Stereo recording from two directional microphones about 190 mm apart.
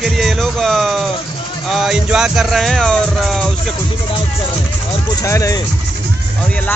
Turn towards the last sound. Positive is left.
turn(degrees=15)  # may be behind; listen again after turning